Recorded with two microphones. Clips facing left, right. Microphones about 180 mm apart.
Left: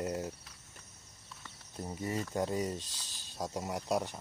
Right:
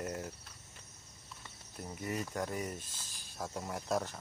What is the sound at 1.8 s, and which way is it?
Speech, 25° left (ahead or behind).